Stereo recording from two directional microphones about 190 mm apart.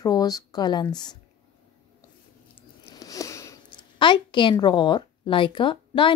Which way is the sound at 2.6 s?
15° left (ahead or behind).